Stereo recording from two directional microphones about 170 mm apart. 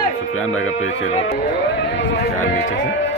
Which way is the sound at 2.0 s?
90° left.